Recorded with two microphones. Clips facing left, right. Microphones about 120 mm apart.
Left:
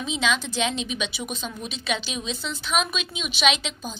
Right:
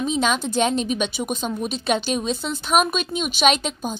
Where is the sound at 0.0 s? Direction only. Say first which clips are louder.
Right 4 dB; 45° right (ahead or behind).